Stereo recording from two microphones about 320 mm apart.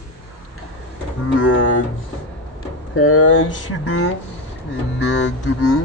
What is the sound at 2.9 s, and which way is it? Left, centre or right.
Speech, left.